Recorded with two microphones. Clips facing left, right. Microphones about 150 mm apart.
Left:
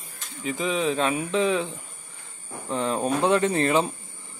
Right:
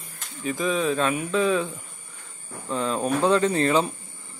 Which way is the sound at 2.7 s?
25° left (ahead or behind).